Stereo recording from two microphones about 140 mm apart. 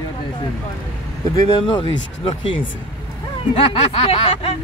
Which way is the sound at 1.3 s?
35° left (ahead or behind).